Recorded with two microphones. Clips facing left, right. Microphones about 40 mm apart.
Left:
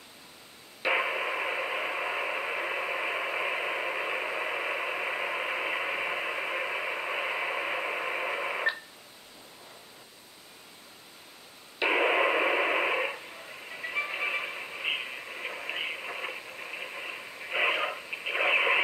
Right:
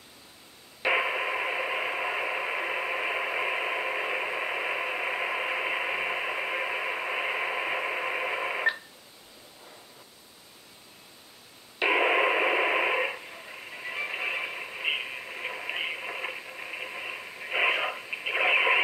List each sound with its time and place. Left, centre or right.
0.8 s radio: centre
11.8 s radio: centre